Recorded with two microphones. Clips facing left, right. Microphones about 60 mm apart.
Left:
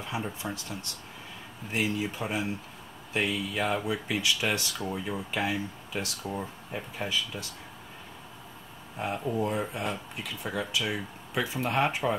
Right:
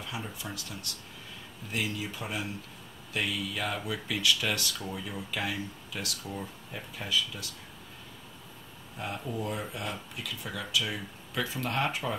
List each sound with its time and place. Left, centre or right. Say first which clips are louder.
0.0 s speech: left 5 dB; left
8.9 s speech: left 5 dB; left